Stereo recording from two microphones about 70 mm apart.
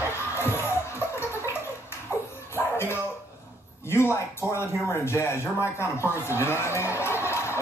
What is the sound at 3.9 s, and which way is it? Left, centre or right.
Speech, left.